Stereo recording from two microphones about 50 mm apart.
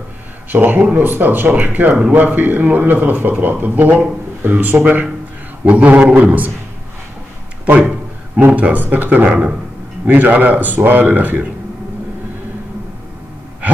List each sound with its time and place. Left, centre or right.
0.5 s a man's voice: right
8.5 s a man's voice: right
10.0 s a man's voice: right